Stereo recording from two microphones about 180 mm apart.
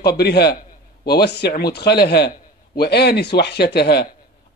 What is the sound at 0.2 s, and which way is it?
A man's voice, 65° left (ahead or behind).